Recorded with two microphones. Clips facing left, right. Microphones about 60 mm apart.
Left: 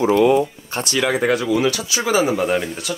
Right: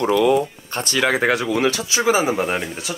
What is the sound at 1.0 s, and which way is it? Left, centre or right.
Speech, right.